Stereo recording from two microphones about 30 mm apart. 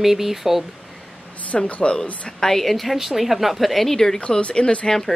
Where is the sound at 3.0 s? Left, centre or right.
Centre.